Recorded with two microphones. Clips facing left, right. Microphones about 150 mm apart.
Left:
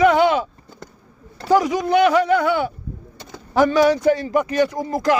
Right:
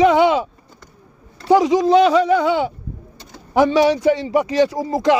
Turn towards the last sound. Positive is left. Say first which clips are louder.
# right 3 dB
turn(degrees=-25)  # may be behind; listen again after turning